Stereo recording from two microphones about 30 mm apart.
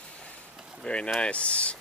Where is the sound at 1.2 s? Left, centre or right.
Left.